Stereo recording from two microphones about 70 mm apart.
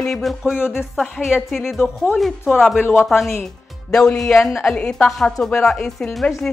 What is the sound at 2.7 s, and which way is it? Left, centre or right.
Speech, left.